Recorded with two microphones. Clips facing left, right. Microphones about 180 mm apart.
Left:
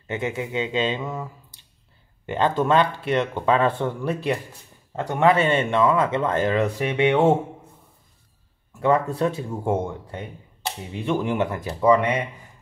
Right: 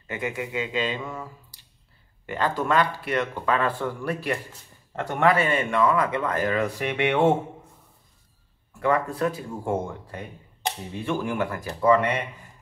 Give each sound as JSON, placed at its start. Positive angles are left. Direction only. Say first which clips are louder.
{"t": 0.1, "sound": "speech", "louder": "left 3 dB", "side_deg": 25}
{"t": 8.7, "sound": "speech", "louder": "left 3 dB", "side_deg": 25}